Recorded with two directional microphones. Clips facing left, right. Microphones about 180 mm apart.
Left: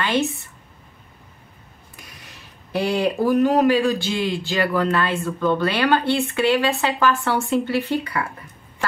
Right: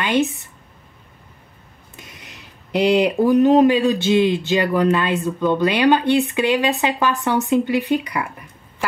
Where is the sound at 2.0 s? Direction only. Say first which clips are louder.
Right 3 dB; 20° right (ahead or behind).